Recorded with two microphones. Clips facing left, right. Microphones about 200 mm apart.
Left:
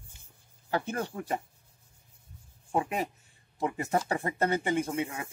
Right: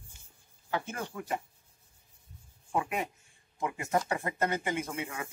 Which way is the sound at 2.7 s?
30° left (ahead or behind).